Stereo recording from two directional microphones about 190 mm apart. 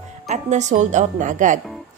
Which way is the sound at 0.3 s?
40° right (ahead or behind).